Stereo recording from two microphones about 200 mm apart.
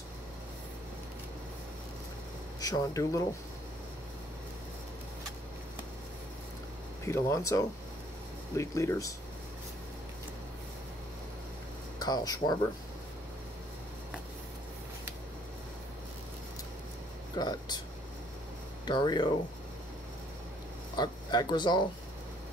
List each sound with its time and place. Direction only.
2.6 s speech: 20° left (ahead or behind)
7.1 s speech: 15° left (ahead or behind)
12.0 s speech: 20° left (ahead or behind)
17.4 s speech: 20° left (ahead or behind)
18.9 s speech: 20° left (ahead or behind)
20.9 s speech: 20° left (ahead or behind)